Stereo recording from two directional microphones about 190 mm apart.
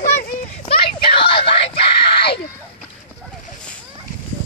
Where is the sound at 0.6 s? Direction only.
25° left (ahead or behind).